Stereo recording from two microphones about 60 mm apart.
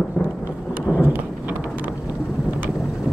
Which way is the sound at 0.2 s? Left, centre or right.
Left.